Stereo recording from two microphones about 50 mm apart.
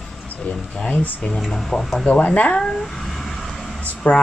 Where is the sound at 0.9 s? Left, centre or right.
Left.